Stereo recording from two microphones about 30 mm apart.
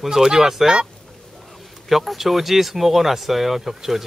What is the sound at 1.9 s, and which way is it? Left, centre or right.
Speech, centre.